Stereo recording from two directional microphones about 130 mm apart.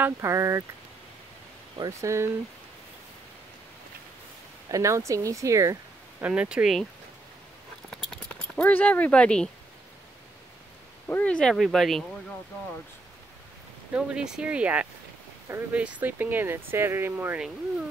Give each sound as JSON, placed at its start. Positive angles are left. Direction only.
{"t": 0.0, "sound": "speech", "side_deg": -20}
{"t": 1.9, "sound": "speech", "side_deg": -20}
{"t": 4.6, "sound": "speech", "side_deg": -25}
{"t": 6.2, "sound": "speech", "side_deg": -10}
{"t": 7.9, "sound": "a sound", "side_deg": 0}
{"t": 11.1, "sound": "speech", "side_deg": 10}
{"t": 13.9, "sound": "speech", "side_deg": -5}